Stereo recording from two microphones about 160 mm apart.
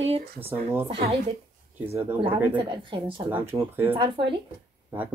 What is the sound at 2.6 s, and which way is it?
Speech, 35° right (ahead or behind).